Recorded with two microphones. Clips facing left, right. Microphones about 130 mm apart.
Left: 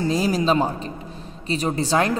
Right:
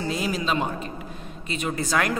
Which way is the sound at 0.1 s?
35° left (ahead or behind).